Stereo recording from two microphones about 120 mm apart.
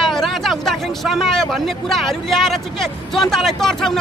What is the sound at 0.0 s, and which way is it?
Speech, centre (ahead or behind).